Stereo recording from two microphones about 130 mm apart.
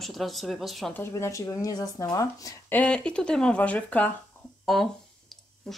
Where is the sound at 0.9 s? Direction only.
20° left (ahead or behind).